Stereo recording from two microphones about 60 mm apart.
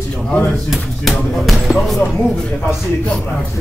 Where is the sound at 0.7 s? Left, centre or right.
Centre.